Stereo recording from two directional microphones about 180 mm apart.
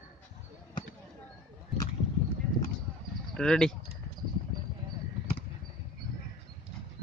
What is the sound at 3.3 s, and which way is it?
Speech, 5° left (ahead or behind).